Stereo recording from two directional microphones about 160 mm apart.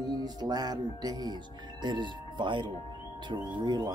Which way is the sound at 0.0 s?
25° right (ahead or behind).